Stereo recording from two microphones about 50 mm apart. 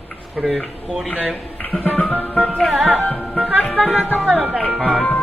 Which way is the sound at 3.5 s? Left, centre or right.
Left.